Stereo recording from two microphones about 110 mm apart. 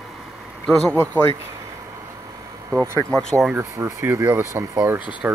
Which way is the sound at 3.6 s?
25° right (ahead or behind).